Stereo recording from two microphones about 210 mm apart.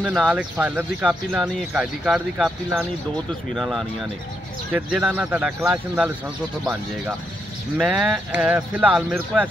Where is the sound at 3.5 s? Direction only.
Centre (ahead or behind).